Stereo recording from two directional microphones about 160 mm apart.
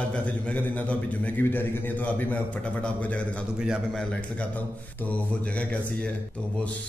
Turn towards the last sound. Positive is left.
turn(degrees=10)  # may be behind; listen again after turning